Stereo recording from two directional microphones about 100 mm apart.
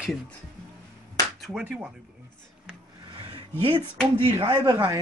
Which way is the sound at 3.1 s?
55° right (ahead or behind).